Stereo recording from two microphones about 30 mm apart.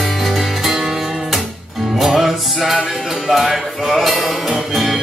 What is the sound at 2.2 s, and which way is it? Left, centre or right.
Music, centre.